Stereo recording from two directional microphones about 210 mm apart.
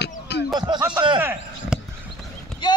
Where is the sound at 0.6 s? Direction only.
20° right (ahead or behind).